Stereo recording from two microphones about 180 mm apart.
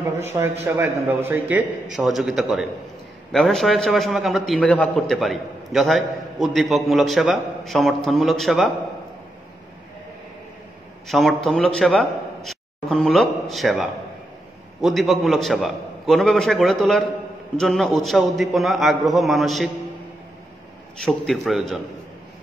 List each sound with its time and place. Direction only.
0.3 s a man's voice: 20° right (ahead or behind); by 8.7 s centre (ahead or behind)
11.1 s a man's voice: centre (ahead or behind)
21.0 s a man's voice: centre (ahead or behind)